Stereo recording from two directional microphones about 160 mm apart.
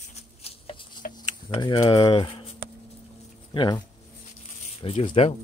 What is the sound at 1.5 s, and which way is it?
Speech, 30° left (ahead or behind).